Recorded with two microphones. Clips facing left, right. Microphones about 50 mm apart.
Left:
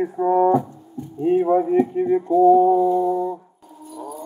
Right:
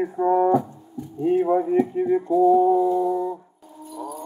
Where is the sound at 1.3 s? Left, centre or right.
Left.